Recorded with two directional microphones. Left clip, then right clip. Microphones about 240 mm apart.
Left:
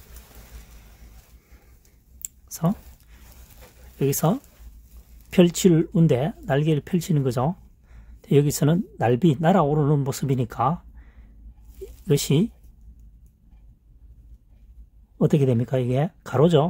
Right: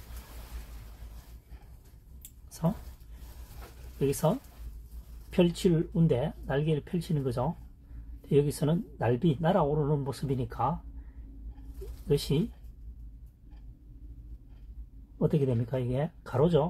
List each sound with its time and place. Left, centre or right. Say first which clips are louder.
4.0 s speech: left 5 dB; left
12.1 s speech: left 7 dB; left
15.1 s speech: left 7 dB; left